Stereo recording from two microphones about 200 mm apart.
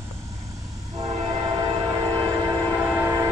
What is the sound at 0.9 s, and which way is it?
Train, 20° right (ahead or behind).